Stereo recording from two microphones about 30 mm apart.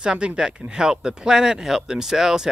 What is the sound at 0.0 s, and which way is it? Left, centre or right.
Speech, right.